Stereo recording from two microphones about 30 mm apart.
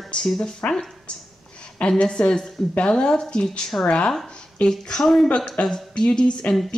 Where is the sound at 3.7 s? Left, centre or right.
Left.